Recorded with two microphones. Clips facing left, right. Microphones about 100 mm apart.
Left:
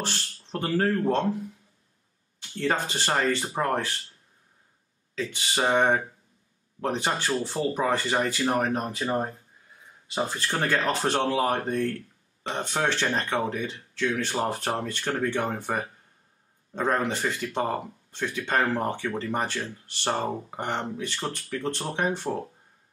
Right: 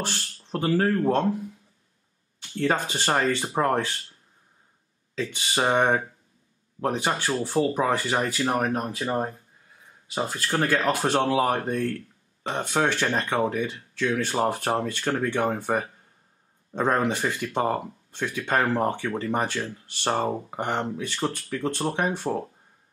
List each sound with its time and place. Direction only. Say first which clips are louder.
0.0 s speech: right 1 dB; 15° right (ahead or behind)
2.6 s speech: right 2 dB; 15° right (ahead or behind)
5.3 s speech: right 1 dB; 15° right (ahead or behind)